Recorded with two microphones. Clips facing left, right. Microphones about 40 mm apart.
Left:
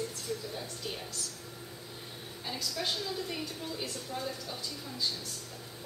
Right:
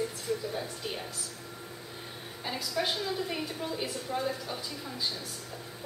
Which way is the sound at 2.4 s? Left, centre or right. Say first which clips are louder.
Right 4 dB; centre.